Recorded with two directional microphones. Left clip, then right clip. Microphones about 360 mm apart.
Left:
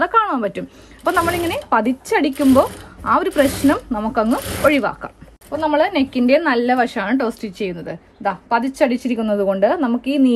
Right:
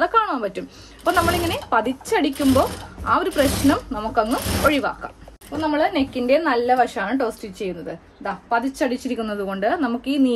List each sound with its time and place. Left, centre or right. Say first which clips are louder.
0.0 s a woman's voice: left 3 dB; centre